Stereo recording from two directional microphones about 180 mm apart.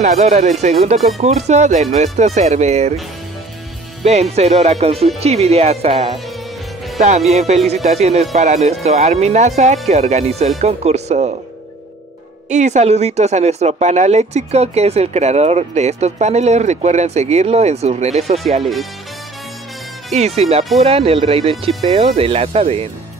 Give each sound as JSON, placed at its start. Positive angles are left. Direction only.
{"t": 0.0, "sound": "speech", "side_deg": -40}
{"t": 4.0, "sound": "speech", "side_deg": -35}
{"t": 12.4, "sound": "speech", "side_deg": -40}
{"t": 18.6, "sound": "speech", "side_deg": 0}
{"t": 20.2, "sound": "speech", "side_deg": -35}